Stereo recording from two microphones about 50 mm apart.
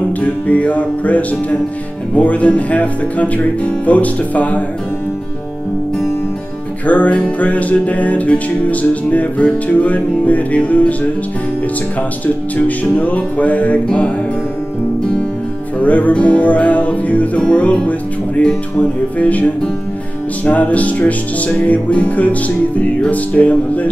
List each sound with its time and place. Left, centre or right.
0.2 s music: left
6.9 s music: left
12.6 s music: left
15.8 s music: left